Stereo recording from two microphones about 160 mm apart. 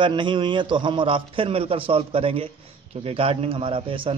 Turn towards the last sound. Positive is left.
turn(degrees=-35)  # may be behind; listen again after turning